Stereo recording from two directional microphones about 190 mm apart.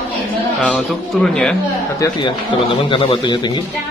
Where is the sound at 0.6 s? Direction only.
5° left (ahead or behind).